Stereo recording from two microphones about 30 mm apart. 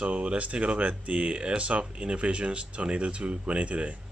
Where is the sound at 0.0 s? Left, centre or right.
Right.